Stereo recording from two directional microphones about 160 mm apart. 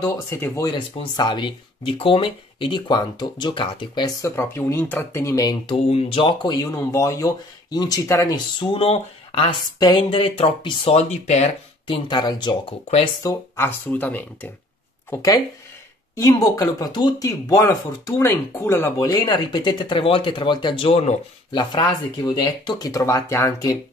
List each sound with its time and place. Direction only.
0.0 s speech: 20° left (ahead or behind)
5.8 s speech: 40° left (ahead or behind); by 8.6 s 20° left (ahead or behind)
8.7 s speech: 35° left (ahead or behind)
12.1 s speech: 25° left (ahead or behind)
13.2 s speech: 20° left (ahead or behind)
15.0 s speech: 25° left (ahead or behind)
19.2 s speech: 30° left (ahead or behind)
21.5 s speech: 30° left (ahead or behind)